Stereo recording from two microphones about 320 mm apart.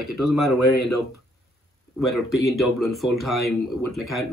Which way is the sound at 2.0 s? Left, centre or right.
Centre.